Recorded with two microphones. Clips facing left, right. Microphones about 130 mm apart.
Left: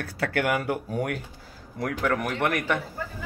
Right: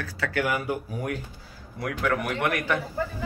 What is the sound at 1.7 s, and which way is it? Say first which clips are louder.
A man's voice: left 1 dB; 40° left (ahead or behind).